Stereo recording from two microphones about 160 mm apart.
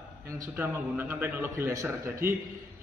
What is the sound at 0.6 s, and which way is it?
A man's voice, 15° right (ahead or behind).